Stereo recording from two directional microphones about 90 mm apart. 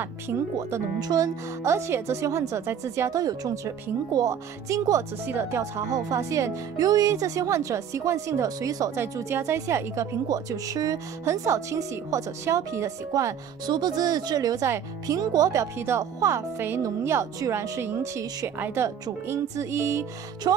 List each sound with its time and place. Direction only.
0.6 s speech: 30° right (ahead or behind)
0.9 s speech: 45° right (ahead or behind)
5.2 s speech: 25° right (ahead or behind)
9.3 s speech: 30° right (ahead or behind)
10.2 s speech: 40° right (ahead or behind)
13.7 s speech: 50° right (ahead or behind); by 18.2 s 30° right (ahead or behind)
19.2 s speech: 30° right (ahead or behind)
20.4 s speech: 50° right (ahead or behind)